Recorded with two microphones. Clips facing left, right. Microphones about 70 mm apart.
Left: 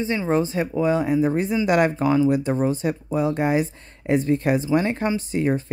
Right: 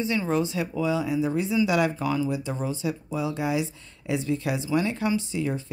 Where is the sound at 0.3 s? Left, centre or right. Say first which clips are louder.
Left 4 dB; left.